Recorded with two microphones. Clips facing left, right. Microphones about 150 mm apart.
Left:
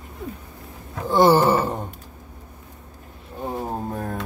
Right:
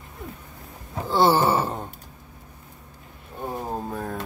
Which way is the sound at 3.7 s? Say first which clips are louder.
Left 2 dB; 10° left (ahead or behind).